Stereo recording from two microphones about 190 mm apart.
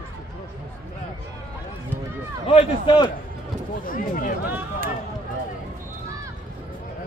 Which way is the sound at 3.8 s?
45° left (ahead or behind).